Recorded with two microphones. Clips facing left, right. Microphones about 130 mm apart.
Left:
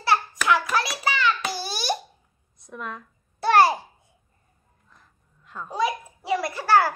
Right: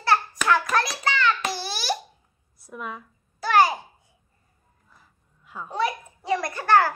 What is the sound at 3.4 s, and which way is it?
Babbling, 25° left (ahead or behind).